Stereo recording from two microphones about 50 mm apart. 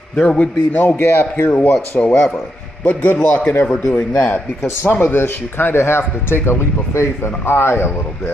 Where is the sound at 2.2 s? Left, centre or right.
Centre.